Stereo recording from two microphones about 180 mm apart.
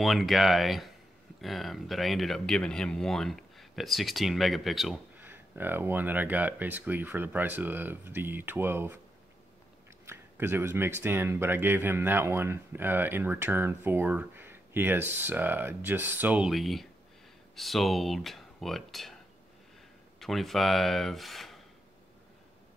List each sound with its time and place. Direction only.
0.0 s speech: centre (ahead or behind)
10.0 s speech: 15° right (ahead or behind)
20.2 s speech: centre (ahead or behind)